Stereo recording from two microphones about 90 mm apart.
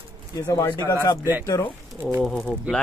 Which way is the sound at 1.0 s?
40° left (ahead or behind).